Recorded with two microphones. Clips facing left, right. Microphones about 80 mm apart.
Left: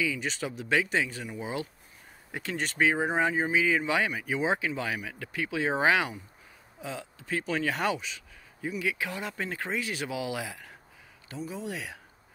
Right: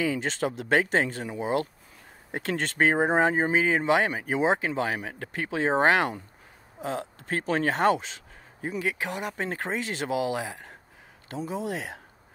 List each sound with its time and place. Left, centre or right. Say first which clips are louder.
0.0 s speech: right 4 dB; right
5.8 s speech: right 3 dB; right
6.8 s speech: right 6 dB; right
9.0 s speech: right 3 dB; right